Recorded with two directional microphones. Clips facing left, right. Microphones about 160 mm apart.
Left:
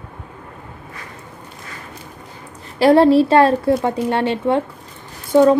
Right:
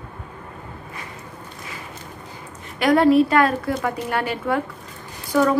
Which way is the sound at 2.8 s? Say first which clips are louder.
Left 4 dB; 30° left (ahead or behind).